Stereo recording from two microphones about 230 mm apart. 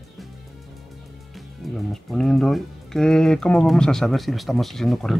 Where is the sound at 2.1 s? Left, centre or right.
Centre.